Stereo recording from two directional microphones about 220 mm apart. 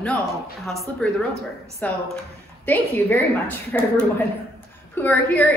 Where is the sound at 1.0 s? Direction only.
5° left (ahead or behind).